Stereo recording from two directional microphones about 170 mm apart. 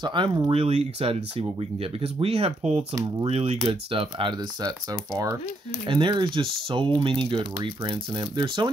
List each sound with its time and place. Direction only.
0.0 s speech: 30° right (ahead or behind)
2.9 s speech: 20° right (ahead or behind)
3.3 s speech: 35° right (ahead or behind)